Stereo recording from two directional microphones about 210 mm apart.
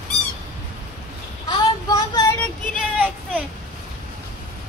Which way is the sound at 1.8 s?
15° left (ahead or behind).